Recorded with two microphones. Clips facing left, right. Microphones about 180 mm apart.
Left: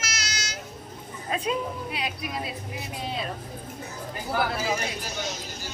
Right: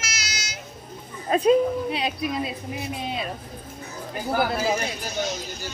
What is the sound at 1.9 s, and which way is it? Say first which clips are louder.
Speech: right 6 dB; 25° right (ahead or behind).